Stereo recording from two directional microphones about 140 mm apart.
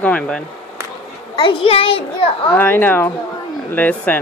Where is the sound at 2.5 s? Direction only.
15° left (ahead or behind).